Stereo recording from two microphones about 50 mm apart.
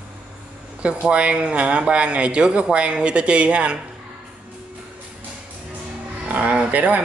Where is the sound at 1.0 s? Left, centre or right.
Right.